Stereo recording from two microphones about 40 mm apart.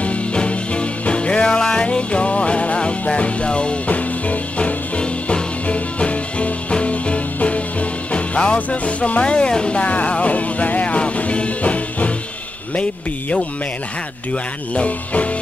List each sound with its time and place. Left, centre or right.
0.0 s music: left
14.3 s speech: left